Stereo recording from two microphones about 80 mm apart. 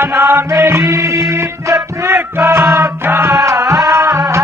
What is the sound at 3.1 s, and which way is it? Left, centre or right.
Music, right.